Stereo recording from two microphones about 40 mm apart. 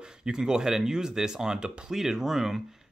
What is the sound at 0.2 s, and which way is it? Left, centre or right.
Speech, centre.